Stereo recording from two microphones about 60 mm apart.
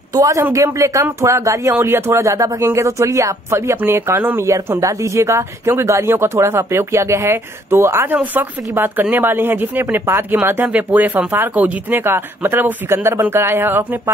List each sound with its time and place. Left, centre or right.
0.1 s a man's voice: right
0.6 s speech: right
1.8 s speech: right
2.6 s speech: right
4.4 s speech: right
8.1 s speech: right
10.7 s speech: right